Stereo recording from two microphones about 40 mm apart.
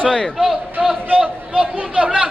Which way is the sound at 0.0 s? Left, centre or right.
Left.